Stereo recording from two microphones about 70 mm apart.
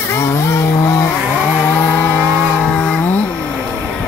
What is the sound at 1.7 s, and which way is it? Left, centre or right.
Chainsaw, left.